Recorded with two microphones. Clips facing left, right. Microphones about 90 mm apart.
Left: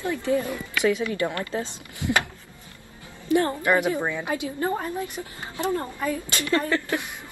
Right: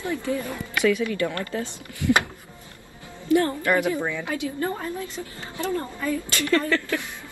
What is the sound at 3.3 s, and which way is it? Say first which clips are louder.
A woman's voice: even; 20° left (ahead or behind).